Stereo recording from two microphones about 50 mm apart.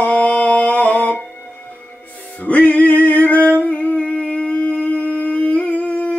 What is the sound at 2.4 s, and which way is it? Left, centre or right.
Singing, left.